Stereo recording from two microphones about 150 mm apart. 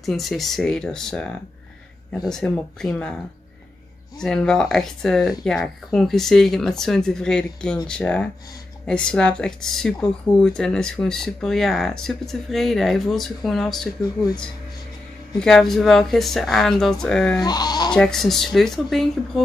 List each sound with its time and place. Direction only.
0.0 s speech: centre (ahead or behind)
4.2 s speech: 5° left (ahead or behind)
15.3 s speech: 5° left (ahead or behind)
17.5 s speech: 30° left (ahead or behind)
17.9 s speech: 5° left (ahead or behind)